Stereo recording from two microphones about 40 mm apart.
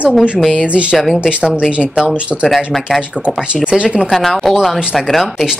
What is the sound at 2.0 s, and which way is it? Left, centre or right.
Speech, centre.